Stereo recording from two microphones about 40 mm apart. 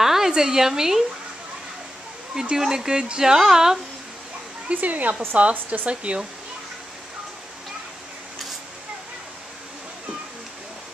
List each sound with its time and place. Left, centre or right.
0.0 s a sound: centre
0.3 s speech: centre
2.5 s speech: centre
4.7 s speech: right